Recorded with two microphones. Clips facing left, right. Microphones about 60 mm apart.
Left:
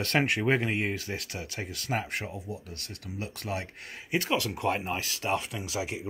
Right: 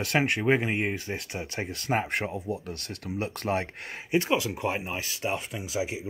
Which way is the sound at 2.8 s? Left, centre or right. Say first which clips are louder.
Right 6 dB; right.